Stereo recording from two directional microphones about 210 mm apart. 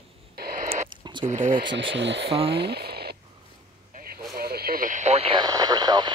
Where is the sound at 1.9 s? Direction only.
55° right (ahead or behind).